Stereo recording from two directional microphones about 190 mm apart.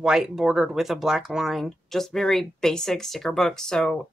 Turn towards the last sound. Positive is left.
turn(degrees=5)  # may be behind; listen again after turning